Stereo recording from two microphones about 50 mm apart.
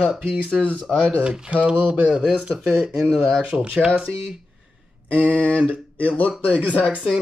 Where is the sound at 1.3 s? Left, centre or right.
Centre.